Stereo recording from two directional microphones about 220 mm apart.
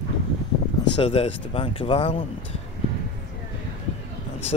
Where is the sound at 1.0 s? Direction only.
25° left (ahead or behind).